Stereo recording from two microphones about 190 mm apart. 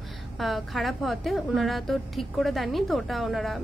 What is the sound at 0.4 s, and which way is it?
A woman's voice, centre (ahead or behind).